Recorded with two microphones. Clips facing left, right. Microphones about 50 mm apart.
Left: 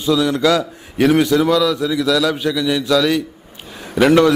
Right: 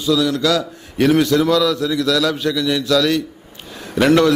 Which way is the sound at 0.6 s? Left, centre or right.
Centre.